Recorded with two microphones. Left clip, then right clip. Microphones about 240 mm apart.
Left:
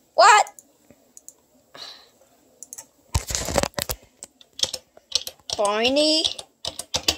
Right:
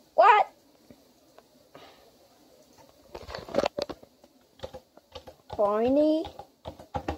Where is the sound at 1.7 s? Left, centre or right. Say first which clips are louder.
Left 12 dB; centre.